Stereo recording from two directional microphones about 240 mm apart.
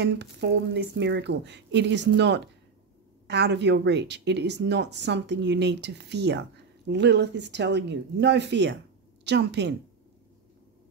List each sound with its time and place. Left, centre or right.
0.0 s speech: right